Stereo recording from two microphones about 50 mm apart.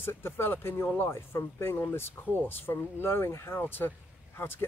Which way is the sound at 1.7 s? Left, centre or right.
Left.